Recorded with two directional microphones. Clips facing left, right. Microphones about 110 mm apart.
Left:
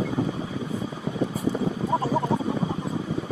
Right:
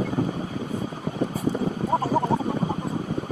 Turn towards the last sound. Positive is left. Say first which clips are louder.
# right 1 dB
turn(degrees=-50)  # may be behind; listen again after turning